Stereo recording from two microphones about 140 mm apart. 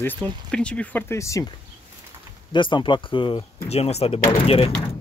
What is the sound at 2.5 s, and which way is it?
Speech, 35° left (ahead or behind).